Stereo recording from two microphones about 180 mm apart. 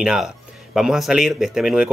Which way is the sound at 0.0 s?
5° right (ahead or behind).